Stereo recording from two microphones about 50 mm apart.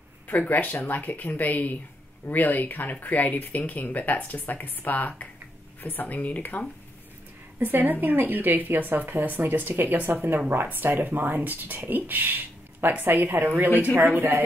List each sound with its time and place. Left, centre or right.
0.5 s speech: left
7.5 s speech: right